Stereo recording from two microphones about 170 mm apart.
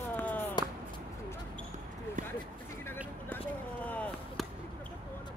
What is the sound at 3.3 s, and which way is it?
Chop, 10° left (ahead or behind).